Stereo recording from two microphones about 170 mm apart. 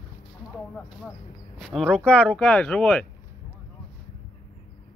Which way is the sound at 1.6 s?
Centre (ahead or behind).